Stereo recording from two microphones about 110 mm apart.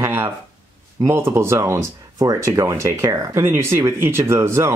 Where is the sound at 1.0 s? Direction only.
25° right (ahead or behind).